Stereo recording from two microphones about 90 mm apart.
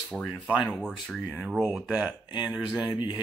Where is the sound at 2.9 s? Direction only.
45° left (ahead or behind).